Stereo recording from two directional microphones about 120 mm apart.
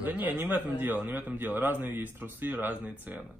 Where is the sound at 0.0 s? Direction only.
15° right (ahead or behind).